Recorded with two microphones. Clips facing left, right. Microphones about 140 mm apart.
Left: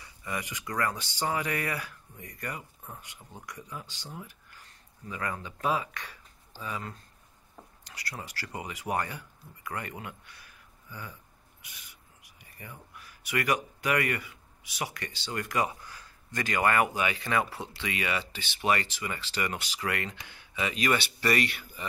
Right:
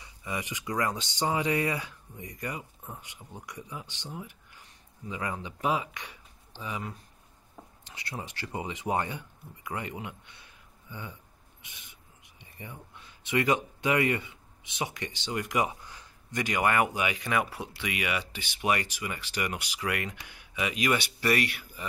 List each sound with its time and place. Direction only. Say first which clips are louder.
0.0 s speech: right 1 dB; 15° right (ahead or behind)